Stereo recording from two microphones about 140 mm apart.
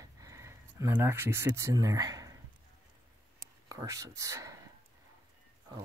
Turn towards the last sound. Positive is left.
turn(degrees=-25)  # may be behind; listen again after turning